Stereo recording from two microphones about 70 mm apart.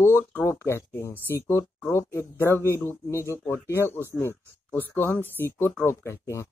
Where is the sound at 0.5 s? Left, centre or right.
Left.